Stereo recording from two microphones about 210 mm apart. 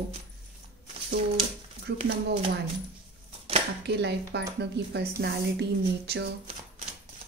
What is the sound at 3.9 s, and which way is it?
A woman's voice, 55° right (ahead or behind).